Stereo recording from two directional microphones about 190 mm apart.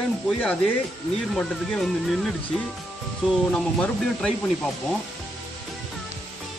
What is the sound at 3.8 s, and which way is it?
Speech, 5° left (ahead or behind).